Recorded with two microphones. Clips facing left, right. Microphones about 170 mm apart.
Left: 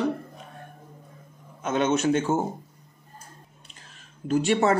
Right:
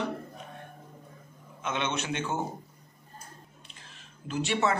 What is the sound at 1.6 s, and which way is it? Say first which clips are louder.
Speech: left 9 dB; 45° left (ahead or behind).